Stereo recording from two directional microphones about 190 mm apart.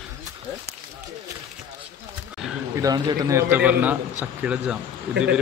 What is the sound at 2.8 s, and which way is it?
A man's voice, 20° right (ahead or behind).